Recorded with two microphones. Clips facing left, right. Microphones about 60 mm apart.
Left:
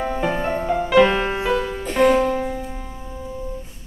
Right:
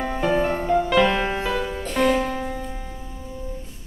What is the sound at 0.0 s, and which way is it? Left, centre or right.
Music, centre.